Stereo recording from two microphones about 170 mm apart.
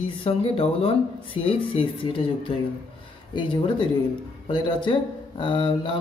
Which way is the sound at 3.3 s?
25° left (ahead or behind).